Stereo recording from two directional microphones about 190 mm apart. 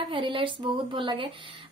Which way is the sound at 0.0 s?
25° right (ahead or behind).